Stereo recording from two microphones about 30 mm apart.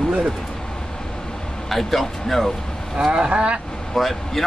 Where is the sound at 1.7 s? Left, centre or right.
Centre.